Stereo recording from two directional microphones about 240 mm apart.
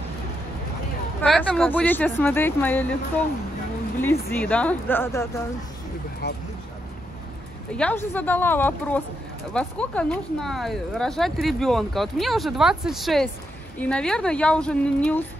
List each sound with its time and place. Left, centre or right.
1.2 s speech: centre
4.0 s speech: centre
6.2 s speech: left
7.7 s speech: centre